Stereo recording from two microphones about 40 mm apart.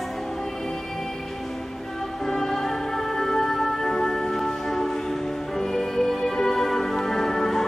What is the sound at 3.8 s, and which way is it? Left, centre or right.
Music, centre.